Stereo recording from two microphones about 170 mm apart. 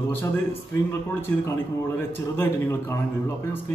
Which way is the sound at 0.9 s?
15° left (ahead or behind).